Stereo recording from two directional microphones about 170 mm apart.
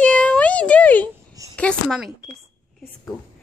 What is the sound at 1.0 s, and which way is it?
Babbling, 20° right (ahead or behind).